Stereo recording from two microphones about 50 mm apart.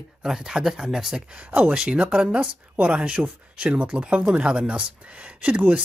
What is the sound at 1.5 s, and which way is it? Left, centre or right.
Speech, right.